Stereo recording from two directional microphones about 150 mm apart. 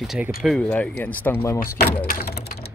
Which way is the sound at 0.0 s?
Centre (ahead or behind).